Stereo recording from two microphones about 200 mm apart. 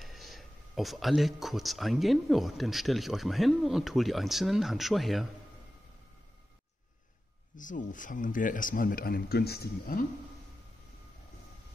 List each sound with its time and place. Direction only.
0.0 s speech: centre (ahead or behind)
7.5 s speech: 40° left (ahead or behind)